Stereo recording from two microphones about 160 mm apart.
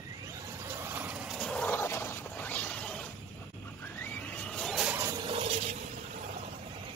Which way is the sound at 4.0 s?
10° left (ahead or behind).